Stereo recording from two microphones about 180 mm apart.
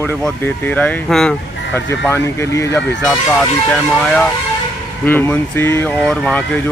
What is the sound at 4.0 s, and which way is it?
Speech, 5° left (ahead or behind).